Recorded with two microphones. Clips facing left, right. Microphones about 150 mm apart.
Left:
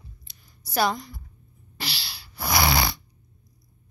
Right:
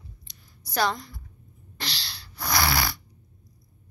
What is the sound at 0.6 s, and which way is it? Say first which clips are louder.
Speech: left 2 dB; 5° left (ahead or behind).